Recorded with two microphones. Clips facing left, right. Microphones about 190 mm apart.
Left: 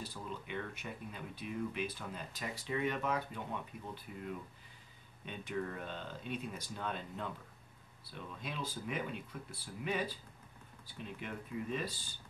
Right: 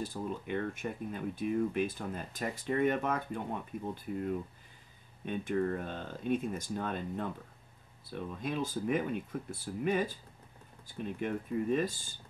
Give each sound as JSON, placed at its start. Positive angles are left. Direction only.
{"t": 0.0, "sound": "speech", "side_deg": -50}